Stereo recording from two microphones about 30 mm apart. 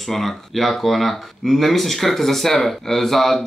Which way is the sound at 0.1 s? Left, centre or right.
Centre.